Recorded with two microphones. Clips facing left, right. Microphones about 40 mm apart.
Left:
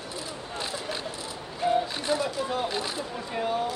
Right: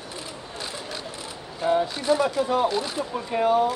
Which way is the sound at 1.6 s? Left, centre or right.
Right.